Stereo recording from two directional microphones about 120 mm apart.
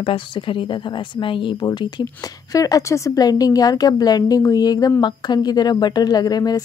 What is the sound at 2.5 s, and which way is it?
Speech, 30° left (ahead or behind).